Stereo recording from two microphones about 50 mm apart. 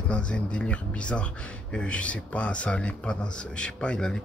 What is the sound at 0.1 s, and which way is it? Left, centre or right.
Speech, left.